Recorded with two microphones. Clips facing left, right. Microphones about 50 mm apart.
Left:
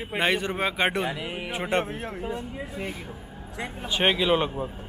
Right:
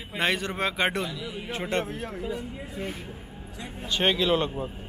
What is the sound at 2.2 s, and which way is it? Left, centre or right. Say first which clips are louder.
Speech: left 1 dB; left.